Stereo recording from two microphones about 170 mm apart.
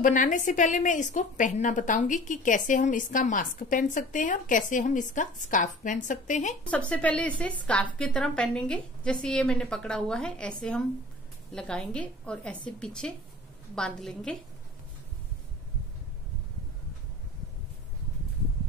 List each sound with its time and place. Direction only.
0.0 s a woman's voice: 50° left (ahead or behind)
6.7 s a woman's voice: 10° left (ahead or behind)